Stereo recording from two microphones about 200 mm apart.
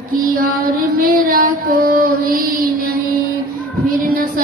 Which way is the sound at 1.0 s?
45° right (ahead or behind).